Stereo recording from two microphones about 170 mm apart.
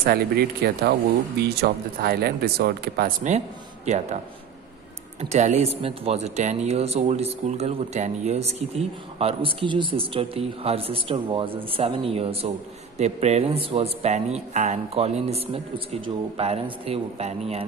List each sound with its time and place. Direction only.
0.0 s speech: 65° right (ahead or behind)
3.3 s a man's voice: 40° right (ahead or behind)
5.3 s speech: 40° right (ahead or behind)